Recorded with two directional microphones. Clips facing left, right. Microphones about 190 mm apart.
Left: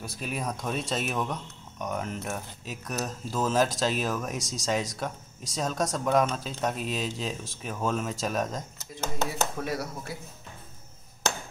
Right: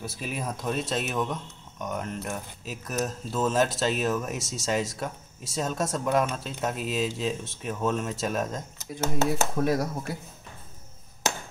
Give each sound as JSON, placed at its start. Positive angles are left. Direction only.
{"t": 0.0, "sound": "a man's voice", "side_deg": 0}
{"t": 9.6, "sound": "speech", "side_deg": -45}